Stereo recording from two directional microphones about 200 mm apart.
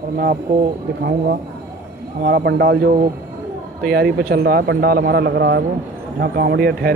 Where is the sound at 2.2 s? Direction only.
50° right (ahead or behind).